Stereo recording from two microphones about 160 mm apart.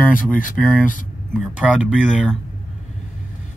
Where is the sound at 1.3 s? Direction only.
10° right (ahead or behind).